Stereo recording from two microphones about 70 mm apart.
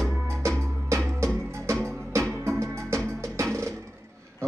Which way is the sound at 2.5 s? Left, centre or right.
Right.